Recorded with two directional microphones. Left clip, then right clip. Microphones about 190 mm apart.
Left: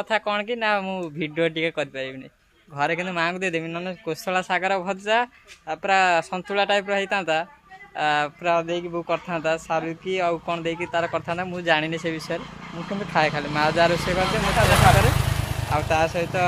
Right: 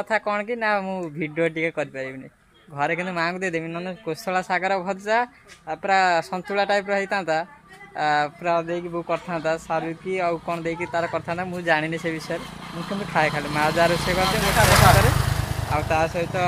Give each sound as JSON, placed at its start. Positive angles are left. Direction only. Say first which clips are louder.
{"t": 0.0, "sound": "speech", "louder": "even", "side_deg": -10}
{"t": 3.4, "sound": "speech", "louder": "left 1 dB", "side_deg": 5}
{"t": 8.4, "sound": "speech", "louder": "left 1 dB", "side_deg": 5}
{"t": 9.8, "sound": "speech", "louder": "left 1 dB", "side_deg": 5}
{"t": 14.2, "sound": "speech", "louder": "right 2 dB", "side_deg": -40}
{"t": 15.0, "sound": "vehicle", "louder": "right 1 dB", "side_deg": 0}
{"t": 15.7, "sound": "speech", "louder": "left 1 dB", "side_deg": 10}